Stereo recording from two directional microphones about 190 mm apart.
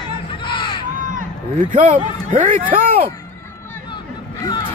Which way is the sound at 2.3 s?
45° right (ahead or behind).